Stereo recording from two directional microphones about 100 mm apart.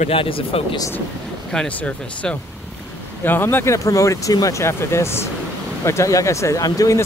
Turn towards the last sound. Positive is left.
turn(degrees=35)  # may be behind; listen again after turning